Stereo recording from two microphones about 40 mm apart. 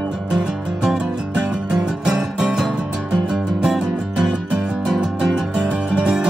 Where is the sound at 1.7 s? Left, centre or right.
Centre.